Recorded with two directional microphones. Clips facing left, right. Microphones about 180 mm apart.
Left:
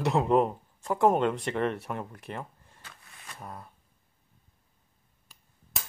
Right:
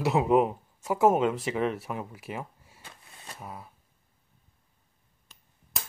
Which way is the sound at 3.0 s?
25° right (ahead or behind).